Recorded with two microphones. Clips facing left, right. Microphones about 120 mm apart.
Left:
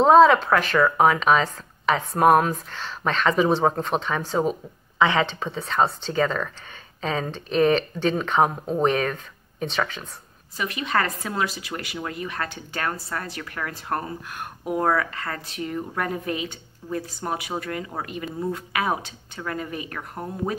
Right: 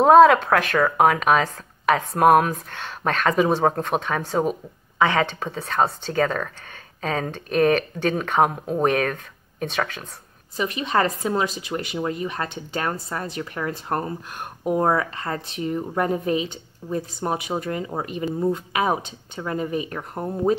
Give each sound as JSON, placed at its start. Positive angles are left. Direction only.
{"t": 0.0, "sound": "speech", "side_deg": -55}
{"t": 4.9, "sound": "speech", "side_deg": -50}
{"t": 10.6, "sound": "speech", "side_deg": -25}